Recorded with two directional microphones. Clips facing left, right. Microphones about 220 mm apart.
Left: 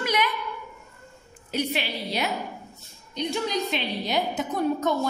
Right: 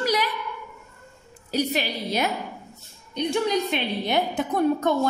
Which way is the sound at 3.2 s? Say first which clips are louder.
Right 4 dB; 55° right (ahead or behind).